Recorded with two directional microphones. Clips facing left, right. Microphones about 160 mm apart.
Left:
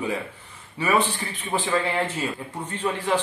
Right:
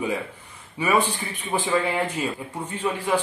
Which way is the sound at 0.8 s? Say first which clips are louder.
Right 1 dB; 15° right (ahead or behind).